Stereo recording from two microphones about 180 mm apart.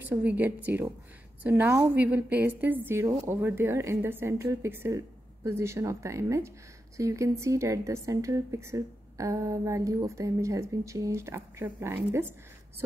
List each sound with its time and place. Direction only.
0.1 s a woman's voice: 10° right (ahead or behind)